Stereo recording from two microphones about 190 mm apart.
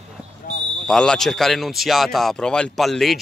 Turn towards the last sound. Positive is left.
turn(degrees=0)  # may be behind; listen again after turning